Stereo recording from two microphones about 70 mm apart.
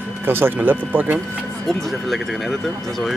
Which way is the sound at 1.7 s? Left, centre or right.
Centre.